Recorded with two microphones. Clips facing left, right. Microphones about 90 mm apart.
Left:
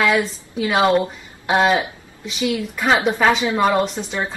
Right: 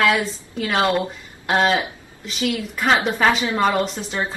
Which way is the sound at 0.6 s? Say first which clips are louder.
Left 3 dB; 10° left (ahead or behind).